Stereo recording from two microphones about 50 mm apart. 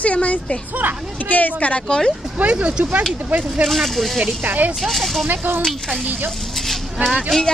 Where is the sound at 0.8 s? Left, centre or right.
Right.